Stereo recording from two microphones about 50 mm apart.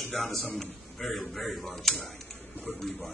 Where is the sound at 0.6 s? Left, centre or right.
Centre.